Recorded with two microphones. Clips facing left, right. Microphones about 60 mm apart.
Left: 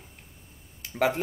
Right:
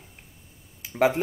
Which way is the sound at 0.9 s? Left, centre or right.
Centre.